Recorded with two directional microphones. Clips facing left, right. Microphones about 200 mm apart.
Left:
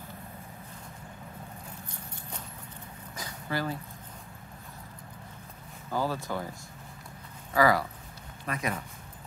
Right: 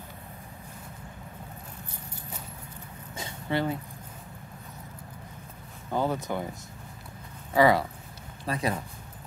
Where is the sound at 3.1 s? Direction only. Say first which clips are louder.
Right 4 dB; 25° right (ahead or behind).